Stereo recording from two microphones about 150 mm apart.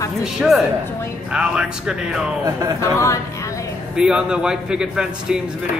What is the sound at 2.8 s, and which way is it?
Speech, 20° left (ahead or behind).